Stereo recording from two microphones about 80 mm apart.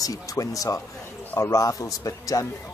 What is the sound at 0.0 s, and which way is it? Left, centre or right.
A man's voice, left.